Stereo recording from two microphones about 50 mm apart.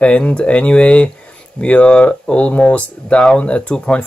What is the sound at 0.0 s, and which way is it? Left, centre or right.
Speech, left.